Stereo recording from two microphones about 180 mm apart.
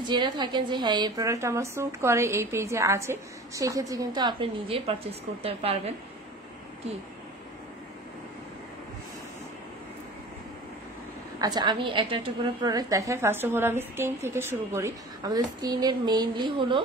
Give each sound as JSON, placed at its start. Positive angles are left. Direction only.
{"t": 0.0, "sound": "a woman's voice", "side_deg": -25}
{"t": 11.3, "sound": "a woman's voice", "side_deg": -20}